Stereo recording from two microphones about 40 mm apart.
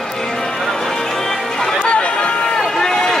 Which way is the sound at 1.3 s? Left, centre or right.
Centre.